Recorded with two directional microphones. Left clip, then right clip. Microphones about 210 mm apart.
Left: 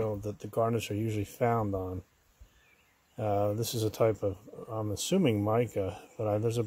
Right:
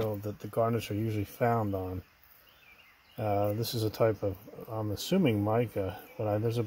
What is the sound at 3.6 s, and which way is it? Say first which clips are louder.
Speech: left 1 dB; 25° left (ahead or behind).